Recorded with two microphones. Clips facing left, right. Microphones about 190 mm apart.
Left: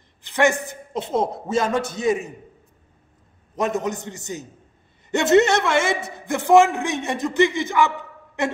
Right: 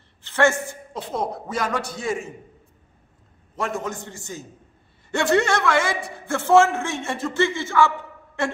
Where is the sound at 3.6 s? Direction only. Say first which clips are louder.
Left 4 dB; 20° left (ahead or behind).